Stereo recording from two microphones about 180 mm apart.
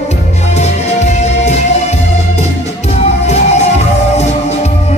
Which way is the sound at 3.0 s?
35° left (ahead or behind).